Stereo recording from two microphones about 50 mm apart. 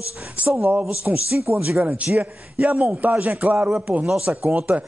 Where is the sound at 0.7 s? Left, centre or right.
Right.